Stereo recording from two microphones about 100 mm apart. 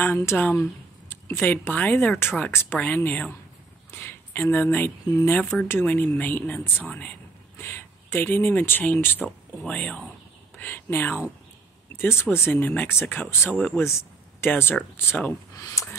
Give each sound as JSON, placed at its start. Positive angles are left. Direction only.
{"t": 0.0, "sound": "speech", "side_deg": 25}
{"t": 13.8, "sound": "a sound", "side_deg": 25}
{"t": 14.5, "sound": "speech", "side_deg": 20}
{"t": 15.5, "sound": "speech", "side_deg": 35}